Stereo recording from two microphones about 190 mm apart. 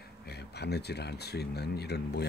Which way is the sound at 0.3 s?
60° left (ahead or behind).